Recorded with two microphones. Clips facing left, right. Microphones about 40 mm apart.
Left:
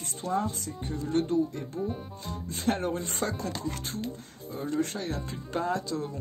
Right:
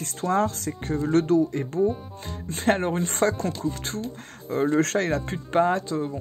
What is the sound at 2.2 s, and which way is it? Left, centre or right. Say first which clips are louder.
Speech: right 6 dB; right.